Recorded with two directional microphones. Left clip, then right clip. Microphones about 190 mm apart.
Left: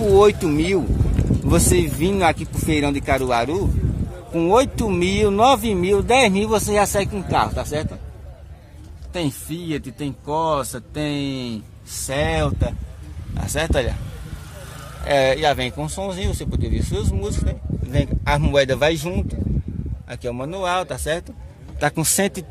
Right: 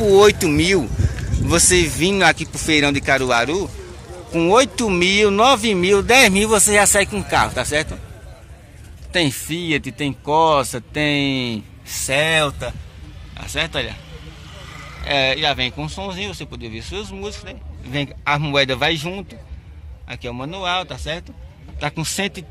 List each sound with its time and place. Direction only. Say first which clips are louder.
0.1 s speech: right 2 dB; 10° left (ahead or behind)
9.5 s speech: right 6 dB; 25° right (ahead or behind)
12.1 s speech: right 5 dB; 5° right (ahead or behind)
13.4 s speech: left 1 dB; 35° left (ahead or behind)
15.0 s speech: left 1 dB; 35° left (ahead or behind)
17.9 s speech: right 1 dB; 15° left (ahead or behind)
20.6 s speech: left 1 dB; 35° left (ahead or behind)